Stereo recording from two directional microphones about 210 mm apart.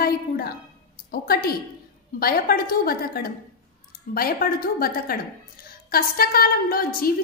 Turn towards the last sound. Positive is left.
turn(degrees=45)  # may be behind; listen again after turning